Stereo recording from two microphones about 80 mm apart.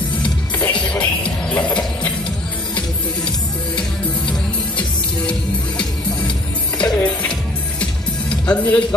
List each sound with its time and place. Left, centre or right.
0.2 s music: centre
4.3 s music: centre
6.8 s music: centre